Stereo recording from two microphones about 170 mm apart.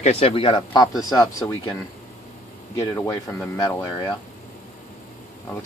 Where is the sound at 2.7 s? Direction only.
20° left (ahead or behind).